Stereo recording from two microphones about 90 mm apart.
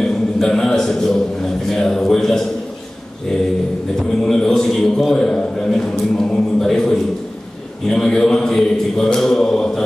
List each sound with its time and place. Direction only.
0.0 s a man's voice: 5° left (ahead or behind)
4.2 s a man's voice: 5° left (ahead or behind)
7.9 s mantra: 5° left (ahead or behind)